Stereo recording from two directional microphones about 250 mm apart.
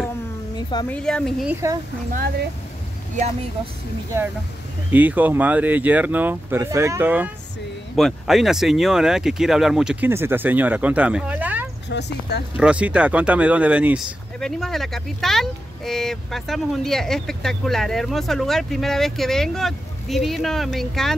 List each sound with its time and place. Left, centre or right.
0.6 s a sound: centre
0.8 s speech: centre
2.1 s speech: right
4.9 s speech: centre
11.9 s speech: left
12.5 s speech: centre